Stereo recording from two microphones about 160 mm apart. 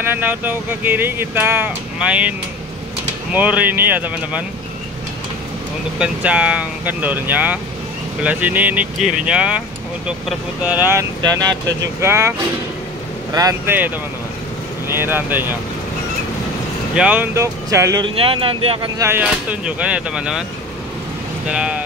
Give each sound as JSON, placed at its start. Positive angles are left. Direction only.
{"t": 0.0, "sound": "speech", "side_deg": -10}
{"t": 3.3, "sound": "speech", "side_deg": -10}
{"t": 5.9, "sound": "speech", "side_deg": -5}
{"t": 16.9, "sound": "speech", "side_deg": -5}
{"t": 18.0, "sound": "speech", "side_deg": -35}
{"t": 18.9, "sound": "speech", "side_deg": -15}
{"t": 21.5, "sound": "speech", "side_deg": -5}